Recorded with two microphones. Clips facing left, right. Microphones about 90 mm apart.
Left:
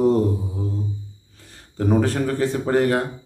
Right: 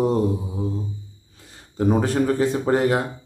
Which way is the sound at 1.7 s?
15° right (ahead or behind).